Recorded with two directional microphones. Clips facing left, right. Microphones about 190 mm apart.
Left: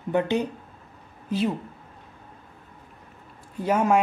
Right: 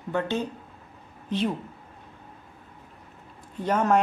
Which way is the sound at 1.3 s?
5° left (ahead or behind).